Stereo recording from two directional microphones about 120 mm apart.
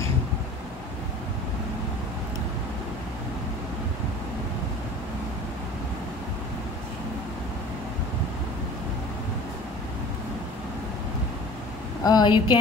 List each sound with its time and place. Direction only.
12.0 s speech: 35° left (ahead or behind)